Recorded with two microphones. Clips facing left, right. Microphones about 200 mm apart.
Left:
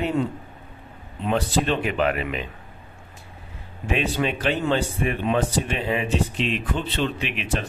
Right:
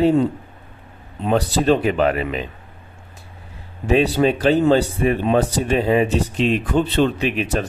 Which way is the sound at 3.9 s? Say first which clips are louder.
Right 8 dB; 35° right (ahead or behind).